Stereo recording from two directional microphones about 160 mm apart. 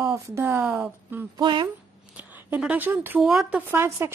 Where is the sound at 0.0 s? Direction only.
20° right (ahead or behind).